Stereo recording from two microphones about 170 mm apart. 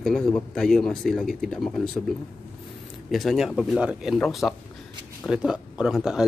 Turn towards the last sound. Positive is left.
turn(degrees=-5)  # may be behind; listen again after turning